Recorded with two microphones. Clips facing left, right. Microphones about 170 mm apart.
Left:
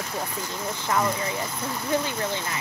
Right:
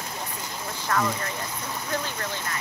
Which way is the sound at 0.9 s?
10° left (ahead or behind).